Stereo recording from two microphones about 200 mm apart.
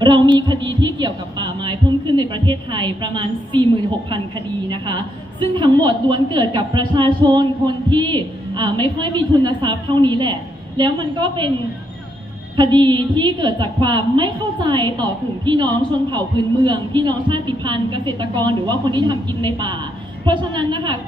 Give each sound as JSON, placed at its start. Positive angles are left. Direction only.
{"t": 0.0, "sound": "a woman's voice", "side_deg": -25}
{"t": 4.6, "sound": "a woman's voice", "side_deg": -25}
{"t": 12.5, "sound": "a woman's voice", "side_deg": -25}